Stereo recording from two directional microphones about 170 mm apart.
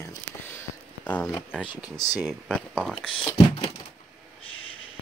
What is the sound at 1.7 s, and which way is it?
Speech, 20° left (ahead or behind).